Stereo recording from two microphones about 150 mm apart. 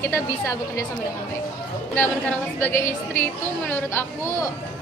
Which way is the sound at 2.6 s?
15° left (ahead or behind).